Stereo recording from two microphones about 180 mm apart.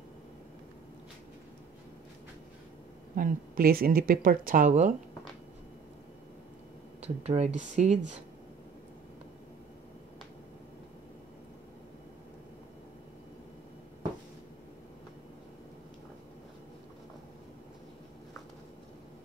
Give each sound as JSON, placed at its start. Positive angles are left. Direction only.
{"t": 3.2, "sound": "speech", "side_deg": -55}
{"t": 7.0, "sound": "speech", "side_deg": -35}